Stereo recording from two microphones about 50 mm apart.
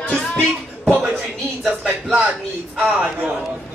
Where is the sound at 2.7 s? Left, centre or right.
Right.